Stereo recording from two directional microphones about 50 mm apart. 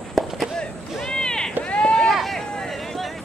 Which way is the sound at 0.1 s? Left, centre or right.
Centre.